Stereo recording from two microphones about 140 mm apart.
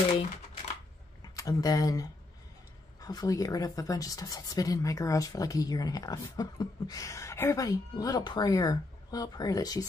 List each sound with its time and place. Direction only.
1.3 s speech: 25° left (ahead or behind)